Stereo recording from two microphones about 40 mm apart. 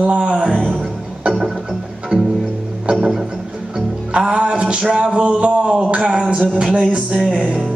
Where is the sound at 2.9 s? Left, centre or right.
Right.